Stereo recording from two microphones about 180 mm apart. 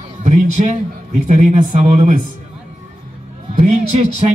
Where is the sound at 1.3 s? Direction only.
40° right (ahead or behind).